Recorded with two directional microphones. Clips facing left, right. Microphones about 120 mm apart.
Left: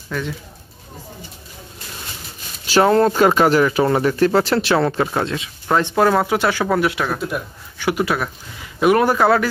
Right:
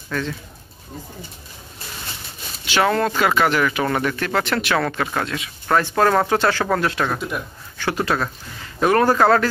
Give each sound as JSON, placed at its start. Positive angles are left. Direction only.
{"t": 0.1, "sound": "speech", "side_deg": 10}
{"t": 2.6, "sound": "a sound", "side_deg": 35}
{"t": 3.2, "sound": "speech", "side_deg": 40}
{"t": 3.6, "sound": "speech", "side_deg": 20}
{"t": 4.8, "sound": "speech", "side_deg": 20}
{"t": 7.7, "sound": "speech", "side_deg": 15}